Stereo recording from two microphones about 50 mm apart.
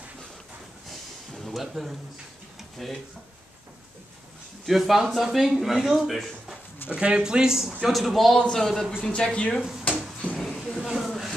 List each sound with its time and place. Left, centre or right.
1.3 s a sound: centre
2.8 s speech: centre
4.6 s speech: centre
7.0 s a man's voice: centre
9.0 s speech: centre
10.3 s a sound: centre